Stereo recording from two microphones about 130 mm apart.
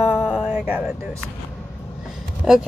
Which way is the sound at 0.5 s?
15° right (ahead or behind).